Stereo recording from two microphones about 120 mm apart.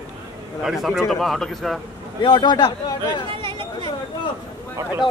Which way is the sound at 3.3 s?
45° right (ahead or behind).